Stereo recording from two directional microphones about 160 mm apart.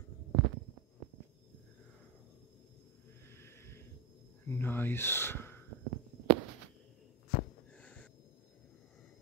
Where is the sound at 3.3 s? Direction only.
15° left (ahead or behind).